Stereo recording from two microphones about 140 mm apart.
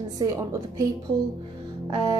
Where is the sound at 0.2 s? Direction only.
25° right (ahead or behind).